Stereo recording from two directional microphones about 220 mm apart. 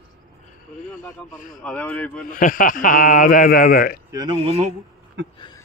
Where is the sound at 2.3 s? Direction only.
40° left (ahead or behind).